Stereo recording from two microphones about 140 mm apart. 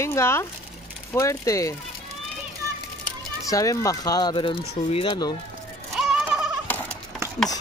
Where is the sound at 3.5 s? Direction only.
25° left (ahead or behind).